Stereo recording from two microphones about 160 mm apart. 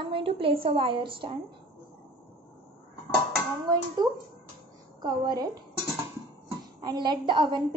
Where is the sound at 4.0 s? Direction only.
25° right (ahead or behind).